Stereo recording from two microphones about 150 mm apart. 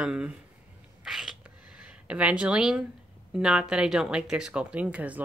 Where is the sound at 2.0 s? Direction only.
10° right (ahead or behind).